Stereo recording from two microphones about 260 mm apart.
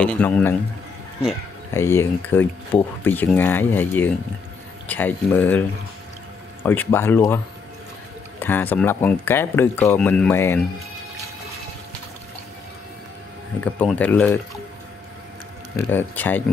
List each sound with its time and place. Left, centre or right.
0.0 s speech: centre
1.7 s speech: centre
8.4 s speech: centre
13.7 s speech: centre
15.9 s speech: centre